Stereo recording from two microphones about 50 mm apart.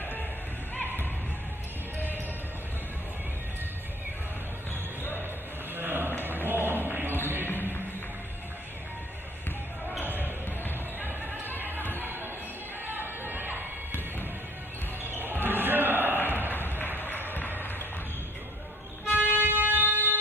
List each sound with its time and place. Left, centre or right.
5.8 s a sound: right
6.2 s music: right
10.0 s basketball bounce: right
11.0 s music: right
12.0 s chatter: right
15.0 s basketball bounce: right
15.4 s a sound: right
16.2 s a sound: left
17.3 s music: left
19.0 s music: left
19.3 s music: right